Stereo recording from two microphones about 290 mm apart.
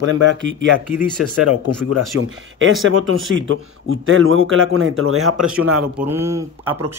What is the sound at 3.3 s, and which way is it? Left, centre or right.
A man's voice, right.